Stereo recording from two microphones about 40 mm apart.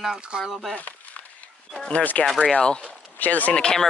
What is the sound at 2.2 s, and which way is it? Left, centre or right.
Speech, left.